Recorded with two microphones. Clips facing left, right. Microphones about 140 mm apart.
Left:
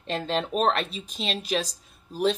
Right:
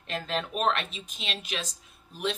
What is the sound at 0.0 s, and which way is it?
Speech, 30° left (ahead or behind).